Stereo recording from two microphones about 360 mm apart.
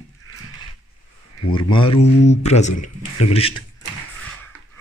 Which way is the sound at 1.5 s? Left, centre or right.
Centre.